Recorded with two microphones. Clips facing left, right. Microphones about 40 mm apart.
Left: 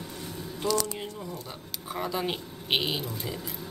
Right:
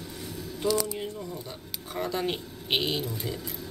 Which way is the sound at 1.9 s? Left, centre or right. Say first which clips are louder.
Right 1 dB; centre.